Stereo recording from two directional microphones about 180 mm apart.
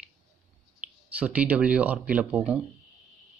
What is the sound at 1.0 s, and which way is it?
Speech, 10° right (ahead or behind).